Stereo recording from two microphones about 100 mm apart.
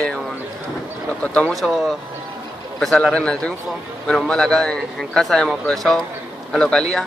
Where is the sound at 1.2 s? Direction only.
15° left (ahead or behind).